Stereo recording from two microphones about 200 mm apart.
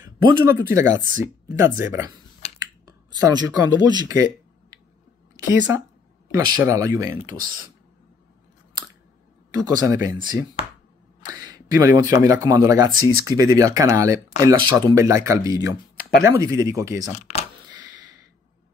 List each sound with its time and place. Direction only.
0.0 s speech: 20° right (ahead or behind)
3.3 s a woman's voice: 20° right (ahead or behind)
9.5 s speech: 20° right (ahead or behind)
11.3 s a sound: 20° right (ahead or behind)
12.2 s speech: 20° right (ahead or behind)
16.0 s a sound: 50° left (ahead or behind)
16.3 s speech: 15° right (ahead or behind)
17.1 s speech: 30° left (ahead or behind)
17.9 s a sound: 60° left (ahead or behind)